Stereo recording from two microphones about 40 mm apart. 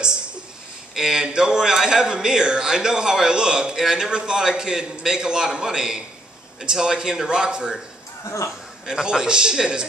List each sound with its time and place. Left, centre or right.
0.9 s a man's voice: centre
8.8 s a man's voice: centre